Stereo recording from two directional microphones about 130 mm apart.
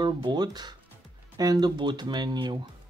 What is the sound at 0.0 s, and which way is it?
Speech, 35° right (ahead or behind).